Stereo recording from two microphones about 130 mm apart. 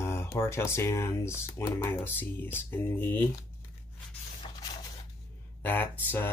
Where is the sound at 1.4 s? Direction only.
20° left (ahead or behind).